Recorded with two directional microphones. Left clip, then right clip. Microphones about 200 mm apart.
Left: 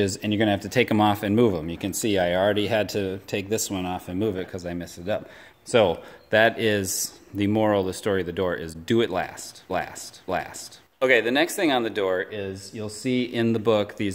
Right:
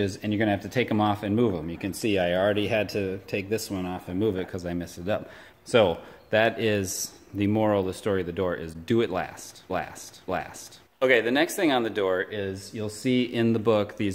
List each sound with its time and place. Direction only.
0.0 s speech: 40° left (ahead or behind)
4.3 s speech: centre (ahead or behind)
5.7 s speech: 15° left (ahead or behind)